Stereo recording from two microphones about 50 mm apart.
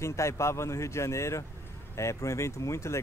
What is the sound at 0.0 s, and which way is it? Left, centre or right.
Speech, left.